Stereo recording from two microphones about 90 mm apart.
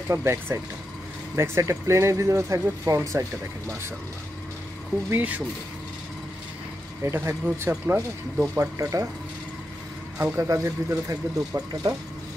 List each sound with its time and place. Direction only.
0.1 s speech: 30° right (ahead or behind)
5.1 s speech: 20° right (ahead or behind)
7.1 s speech: 30° right (ahead or behind)
10.1 s speech: 25° right (ahead or behind)